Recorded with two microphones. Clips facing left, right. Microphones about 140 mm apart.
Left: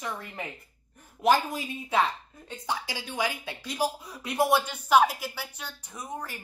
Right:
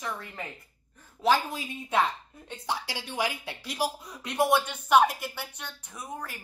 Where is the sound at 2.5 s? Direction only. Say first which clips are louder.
Even; 5° left (ahead or behind).